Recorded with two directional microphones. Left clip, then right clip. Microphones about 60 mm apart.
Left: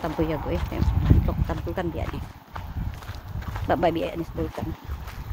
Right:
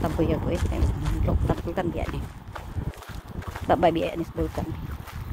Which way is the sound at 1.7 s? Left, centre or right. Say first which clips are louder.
Left 2 dB; right.